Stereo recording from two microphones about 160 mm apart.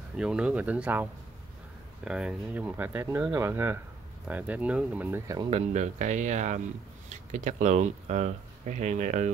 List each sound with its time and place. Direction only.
0.2 s speech: 5° right (ahead or behind)
2.0 s speech: 5° right (ahead or behind)
5.5 s speech: 45° right (ahead or behind)